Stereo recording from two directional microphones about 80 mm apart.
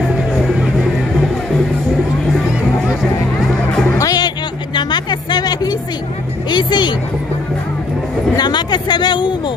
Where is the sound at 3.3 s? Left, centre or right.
Centre.